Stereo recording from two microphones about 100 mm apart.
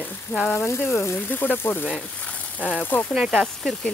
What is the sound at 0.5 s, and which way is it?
Speech, 25° left (ahead or behind).